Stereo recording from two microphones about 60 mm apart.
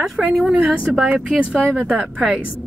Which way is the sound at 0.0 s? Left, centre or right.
Centre.